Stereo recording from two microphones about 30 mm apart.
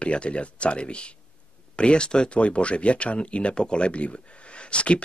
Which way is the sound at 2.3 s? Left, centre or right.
Left.